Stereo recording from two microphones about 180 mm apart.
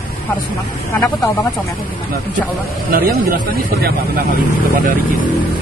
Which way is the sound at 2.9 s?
55° right (ahead or behind).